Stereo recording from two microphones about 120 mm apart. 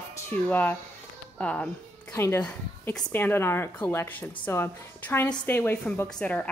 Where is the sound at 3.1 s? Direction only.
15° left (ahead or behind).